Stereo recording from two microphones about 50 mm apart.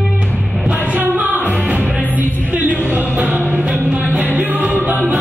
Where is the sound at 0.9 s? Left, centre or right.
Right.